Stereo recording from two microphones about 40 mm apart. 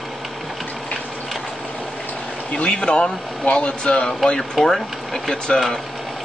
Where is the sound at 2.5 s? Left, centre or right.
Left.